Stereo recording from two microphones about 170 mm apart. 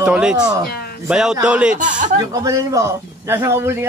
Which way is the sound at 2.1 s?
20° right (ahead or behind).